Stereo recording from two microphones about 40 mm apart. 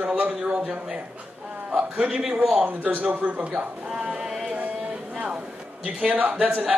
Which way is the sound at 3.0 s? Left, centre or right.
Right.